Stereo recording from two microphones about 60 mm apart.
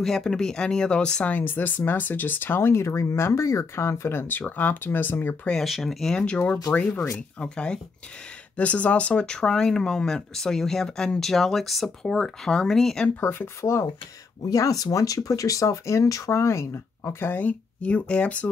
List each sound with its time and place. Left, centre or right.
0.0 s speech: centre
1.3 s speech: left
5.5 s speech: centre
6.2 s speech: centre
13.2 s speech: left
14.5 s speech: left